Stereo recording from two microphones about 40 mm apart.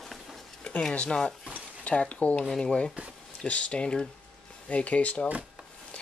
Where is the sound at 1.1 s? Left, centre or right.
Centre.